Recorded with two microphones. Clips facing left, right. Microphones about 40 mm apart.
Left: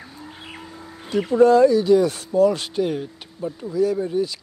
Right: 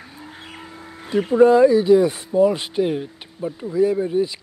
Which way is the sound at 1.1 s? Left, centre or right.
Centre.